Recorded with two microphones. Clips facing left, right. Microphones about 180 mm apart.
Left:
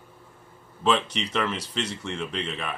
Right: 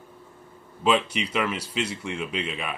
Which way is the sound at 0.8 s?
10° right (ahead or behind).